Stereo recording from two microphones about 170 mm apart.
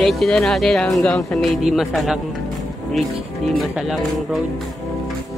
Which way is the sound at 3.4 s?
Centre (ahead or behind).